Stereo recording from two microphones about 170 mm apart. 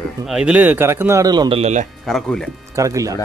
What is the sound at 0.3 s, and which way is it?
A man's voice, 5° right (ahead or behind).